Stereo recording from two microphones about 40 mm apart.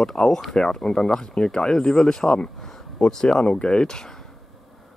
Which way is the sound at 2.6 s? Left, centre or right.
Centre.